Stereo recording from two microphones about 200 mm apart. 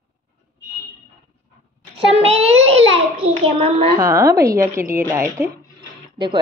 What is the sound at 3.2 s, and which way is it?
Speech, 30° right (ahead or behind).